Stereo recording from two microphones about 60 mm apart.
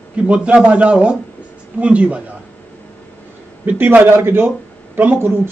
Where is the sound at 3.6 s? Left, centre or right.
Right.